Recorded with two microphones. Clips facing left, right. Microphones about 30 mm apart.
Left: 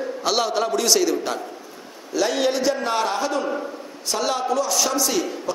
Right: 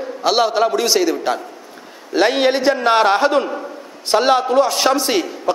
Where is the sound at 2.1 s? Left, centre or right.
Right.